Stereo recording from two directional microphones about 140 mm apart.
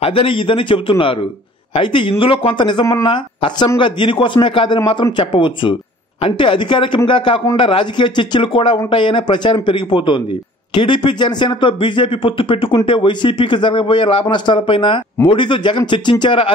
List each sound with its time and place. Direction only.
0.0 s speech: 40° left (ahead or behind)
4.7 s speech: 25° left (ahead or behind)
5.1 s speech: 35° left (ahead or behind)